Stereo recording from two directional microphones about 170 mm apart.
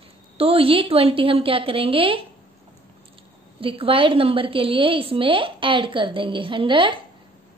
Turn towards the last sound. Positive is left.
turn(degrees=-30)  # may be behind; listen again after turning